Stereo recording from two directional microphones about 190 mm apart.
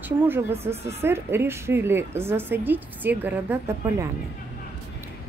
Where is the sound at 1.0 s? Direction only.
10° right (ahead or behind).